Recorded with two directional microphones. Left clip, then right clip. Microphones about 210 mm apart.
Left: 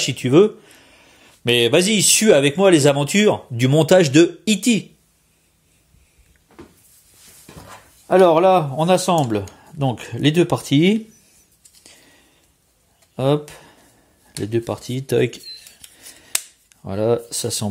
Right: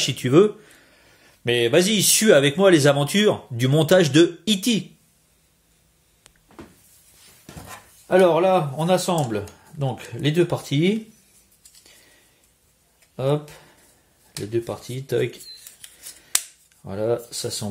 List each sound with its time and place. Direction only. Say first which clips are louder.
0.0 s speech: left 2 dB; 15° left (ahead or behind)
8.1 s speech: left 4 dB; 45° left (ahead or behind)
13.1 s speech: left 4 dB; 50° left (ahead or behind)
16.2 s cap gun: even; 50° left (ahead or behind)